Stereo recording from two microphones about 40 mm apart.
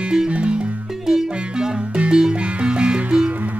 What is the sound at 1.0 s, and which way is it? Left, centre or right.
Music, centre.